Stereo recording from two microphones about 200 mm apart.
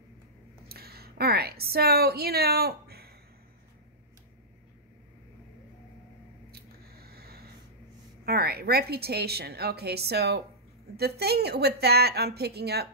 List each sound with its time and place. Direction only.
0.7 s a woman's voice: 50° right (ahead or behind)
6.5 s squish: 50° right (ahead or behind)
8.3 s a woman's voice: 50° right (ahead or behind)